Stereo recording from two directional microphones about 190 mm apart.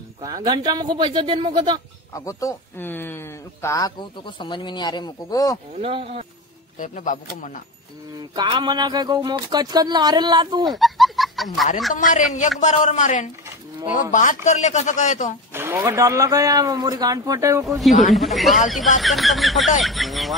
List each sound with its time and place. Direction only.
0.2 s speech: 20° right (ahead or behind)
2.1 s speech: 15° left (ahead or behind)
5.8 s speech: 30° right (ahead or behind)
6.8 s speech: 45° left (ahead or behind)
8.2 s speech: 25° right (ahead or behind)
10.8 s a sound: centre (ahead or behind)
11.9 s speech: 40° left (ahead or behind)
15.5 s speech: 10° right (ahead or behind)
17.6 s a sound: centre (ahead or behind)